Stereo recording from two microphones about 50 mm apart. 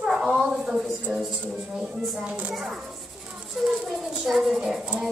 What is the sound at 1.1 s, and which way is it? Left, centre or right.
Music, centre.